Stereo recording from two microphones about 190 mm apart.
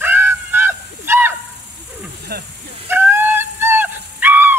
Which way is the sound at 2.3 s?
55° right (ahead or behind).